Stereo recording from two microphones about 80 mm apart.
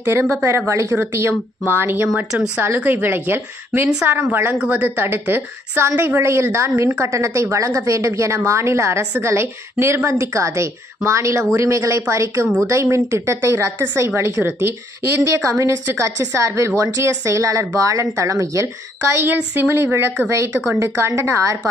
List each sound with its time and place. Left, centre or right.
0.1 s a woman's voice: right
19.1 s a woman's voice: right